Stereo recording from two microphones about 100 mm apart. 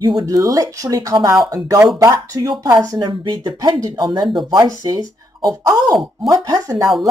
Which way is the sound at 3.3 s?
40° right (ahead or behind).